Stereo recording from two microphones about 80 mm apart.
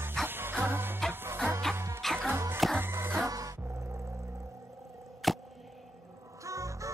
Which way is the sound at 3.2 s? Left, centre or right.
Right.